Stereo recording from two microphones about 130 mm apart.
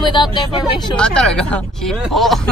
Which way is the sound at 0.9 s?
5° left (ahead or behind).